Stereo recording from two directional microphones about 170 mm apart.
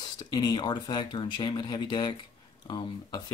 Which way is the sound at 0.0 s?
25° left (ahead or behind).